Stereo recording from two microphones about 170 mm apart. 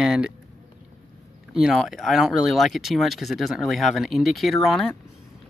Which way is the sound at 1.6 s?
Centre (ahead or behind).